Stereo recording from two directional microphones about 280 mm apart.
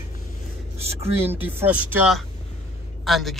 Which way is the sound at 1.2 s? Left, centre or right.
Centre.